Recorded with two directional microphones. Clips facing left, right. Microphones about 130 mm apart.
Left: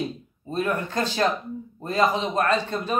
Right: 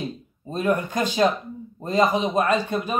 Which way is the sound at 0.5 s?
15° right (ahead or behind).